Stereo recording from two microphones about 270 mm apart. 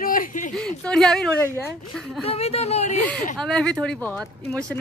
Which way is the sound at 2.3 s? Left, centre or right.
Left.